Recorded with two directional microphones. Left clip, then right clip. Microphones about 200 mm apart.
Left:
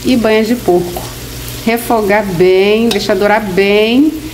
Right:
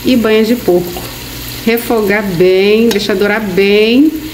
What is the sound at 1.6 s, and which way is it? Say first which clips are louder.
Speech: even; 5° right (ahead or behind).